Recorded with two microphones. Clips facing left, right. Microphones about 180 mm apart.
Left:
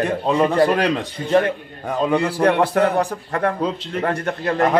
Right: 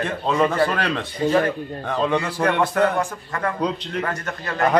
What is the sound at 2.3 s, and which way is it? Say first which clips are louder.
A man's voice: left 4 dB; 35° left (ahead or behind).